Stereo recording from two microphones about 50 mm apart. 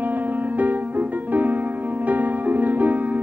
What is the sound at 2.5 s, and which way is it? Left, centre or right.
Music, right.